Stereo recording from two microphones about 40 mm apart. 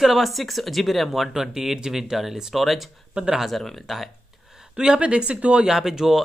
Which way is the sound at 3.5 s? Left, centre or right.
Centre.